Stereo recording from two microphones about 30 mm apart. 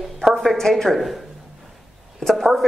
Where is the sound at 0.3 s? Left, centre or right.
Centre.